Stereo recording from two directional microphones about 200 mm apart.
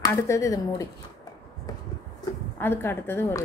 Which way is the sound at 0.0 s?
15° left (ahead or behind).